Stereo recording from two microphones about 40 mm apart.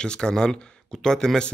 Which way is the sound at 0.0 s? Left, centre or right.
Centre.